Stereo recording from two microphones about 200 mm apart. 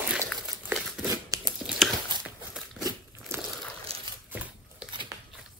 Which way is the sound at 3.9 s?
30° right (ahead or behind).